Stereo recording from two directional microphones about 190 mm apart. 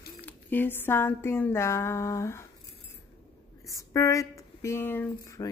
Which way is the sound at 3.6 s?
15° left (ahead or behind).